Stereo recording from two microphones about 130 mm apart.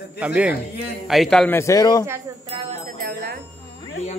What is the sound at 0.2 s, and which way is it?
A man's voice, 10° right (ahead or behind).